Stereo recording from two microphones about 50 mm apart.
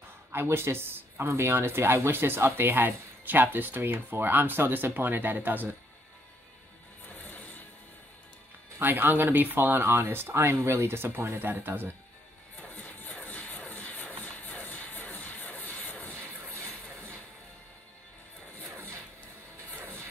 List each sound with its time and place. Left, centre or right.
0.3 s speech: right
1.3 s speech: right
8.7 s speech: right
11.3 s speech: right
12.7 s music: left